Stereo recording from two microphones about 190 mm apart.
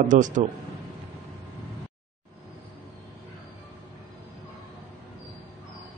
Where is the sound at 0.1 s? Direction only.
40° right (ahead or behind).